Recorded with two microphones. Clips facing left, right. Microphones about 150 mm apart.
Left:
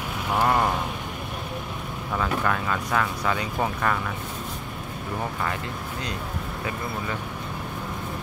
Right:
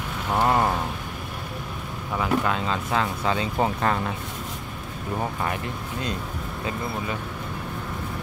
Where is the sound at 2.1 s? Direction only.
20° right (ahead or behind).